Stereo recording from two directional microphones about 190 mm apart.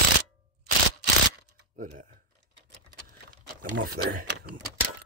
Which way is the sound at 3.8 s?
50° right (ahead or behind).